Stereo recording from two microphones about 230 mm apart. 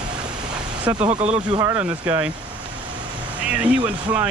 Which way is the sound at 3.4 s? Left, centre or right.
Centre.